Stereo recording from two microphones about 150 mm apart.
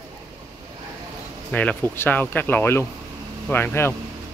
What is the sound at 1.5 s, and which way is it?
Speech, 10° left (ahead or behind).